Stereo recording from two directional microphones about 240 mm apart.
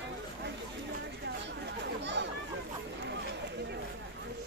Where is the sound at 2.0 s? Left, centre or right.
Right.